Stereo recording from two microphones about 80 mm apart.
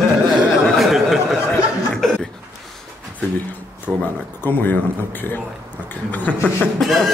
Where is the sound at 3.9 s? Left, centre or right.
Centre.